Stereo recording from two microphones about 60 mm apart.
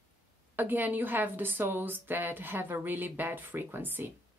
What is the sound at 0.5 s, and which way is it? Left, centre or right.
A woman's voice, right.